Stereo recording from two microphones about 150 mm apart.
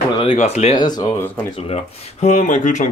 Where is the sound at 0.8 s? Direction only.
30° left (ahead or behind).